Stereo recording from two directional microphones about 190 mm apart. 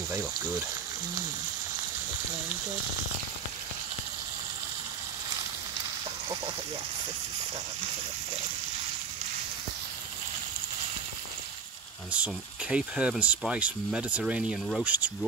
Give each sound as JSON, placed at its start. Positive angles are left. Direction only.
{"t": 12.1, "sound": "speech", "side_deg": -5}